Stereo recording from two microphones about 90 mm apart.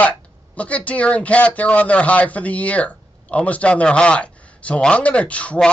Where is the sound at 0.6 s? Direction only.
15° left (ahead or behind).